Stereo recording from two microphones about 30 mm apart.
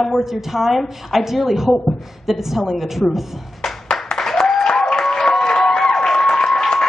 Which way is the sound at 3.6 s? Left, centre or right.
Centre.